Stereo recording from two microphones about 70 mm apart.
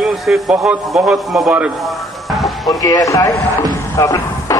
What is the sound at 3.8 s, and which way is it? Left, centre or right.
Music, left.